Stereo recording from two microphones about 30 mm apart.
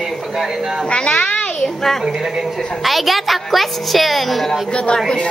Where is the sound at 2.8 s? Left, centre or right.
Centre.